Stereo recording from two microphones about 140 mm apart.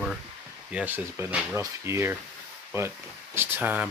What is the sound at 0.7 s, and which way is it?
Speech, 10° right (ahead or behind).